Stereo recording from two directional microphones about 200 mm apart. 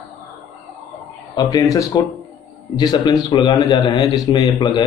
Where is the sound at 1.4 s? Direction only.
20° left (ahead or behind).